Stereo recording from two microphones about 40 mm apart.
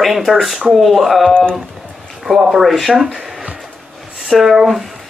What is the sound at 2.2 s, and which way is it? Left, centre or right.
Speech, centre.